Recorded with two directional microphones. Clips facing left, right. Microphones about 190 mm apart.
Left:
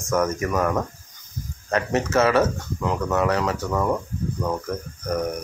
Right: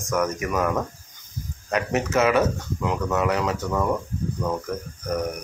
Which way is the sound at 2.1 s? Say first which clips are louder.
Left 1 dB; 20° right (ahead or behind).